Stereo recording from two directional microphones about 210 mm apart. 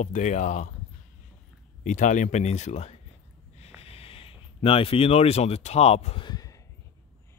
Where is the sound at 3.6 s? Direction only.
30° left (ahead or behind).